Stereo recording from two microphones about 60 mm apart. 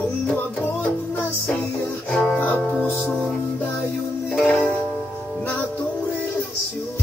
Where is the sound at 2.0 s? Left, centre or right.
Centre.